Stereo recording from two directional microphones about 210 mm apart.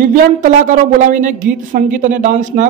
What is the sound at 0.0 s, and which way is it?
A man's voice, 40° right (ahead or behind).